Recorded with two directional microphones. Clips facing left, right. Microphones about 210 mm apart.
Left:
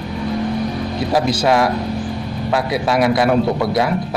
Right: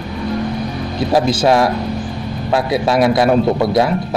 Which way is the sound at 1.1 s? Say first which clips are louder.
Right 3 dB; 25° right (ahead or behind).